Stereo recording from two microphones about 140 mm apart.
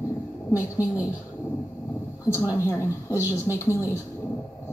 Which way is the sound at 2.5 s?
20° left (ahead or behind).